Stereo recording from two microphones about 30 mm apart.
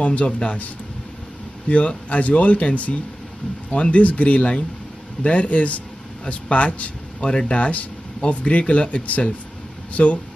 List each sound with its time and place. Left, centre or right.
0.0 s speech: left
1.7 s speech: left
7.2 s speech: left